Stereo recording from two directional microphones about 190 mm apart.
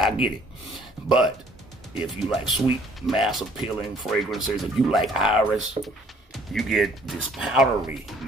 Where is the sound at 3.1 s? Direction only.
Centre (ahead or behind).